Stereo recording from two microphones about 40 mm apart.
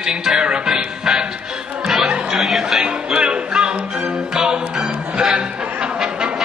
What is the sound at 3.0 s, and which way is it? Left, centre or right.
Music, right.